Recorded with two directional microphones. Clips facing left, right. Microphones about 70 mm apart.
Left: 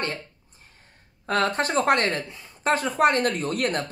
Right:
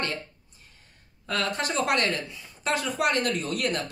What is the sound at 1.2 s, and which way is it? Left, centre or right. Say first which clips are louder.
Speech: left 5 dB; left.